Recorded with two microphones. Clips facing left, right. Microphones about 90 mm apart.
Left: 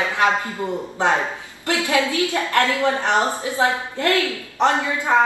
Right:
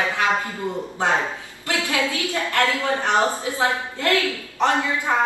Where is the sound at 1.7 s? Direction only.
20° left (ahead or behind).